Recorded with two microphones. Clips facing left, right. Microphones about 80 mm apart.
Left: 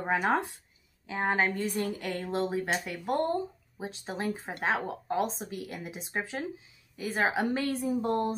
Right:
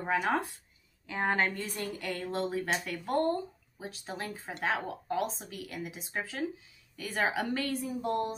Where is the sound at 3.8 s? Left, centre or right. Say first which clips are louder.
Left 5 dB; left.